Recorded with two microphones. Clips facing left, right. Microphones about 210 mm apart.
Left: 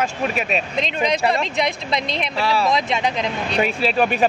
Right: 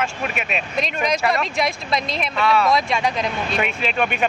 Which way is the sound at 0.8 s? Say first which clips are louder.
Even; 25° left (ahead or behind).